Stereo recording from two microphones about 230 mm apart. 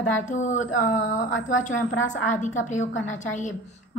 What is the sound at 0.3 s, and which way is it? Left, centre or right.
Speech, left.